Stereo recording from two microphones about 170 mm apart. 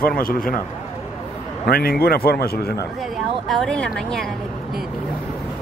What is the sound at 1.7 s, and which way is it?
A man's voice, 65° left (ahead or behind).